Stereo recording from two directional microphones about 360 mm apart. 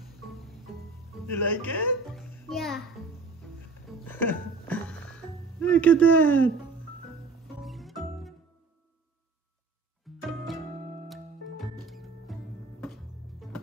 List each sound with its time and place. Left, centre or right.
1.2 s speech: centre
2.1 s music: centre
4.0 s music: centre
7.6 s music: centre
10.2 s music: centre